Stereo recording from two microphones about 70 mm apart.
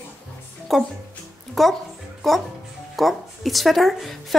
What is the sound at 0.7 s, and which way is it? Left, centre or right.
Speech, centre.